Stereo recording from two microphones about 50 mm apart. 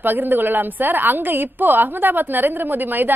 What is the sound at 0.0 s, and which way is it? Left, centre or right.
A woman's voice, right.